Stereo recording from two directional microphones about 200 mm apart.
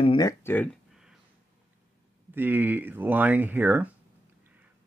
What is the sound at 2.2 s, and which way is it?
Speech, 10° right (ahead or behind).